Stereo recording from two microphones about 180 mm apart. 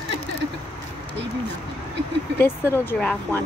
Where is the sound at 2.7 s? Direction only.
10° left (ahead or behind).